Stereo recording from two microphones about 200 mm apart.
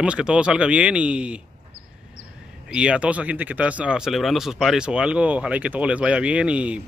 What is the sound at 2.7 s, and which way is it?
Speech, 5° right (ahead or behind).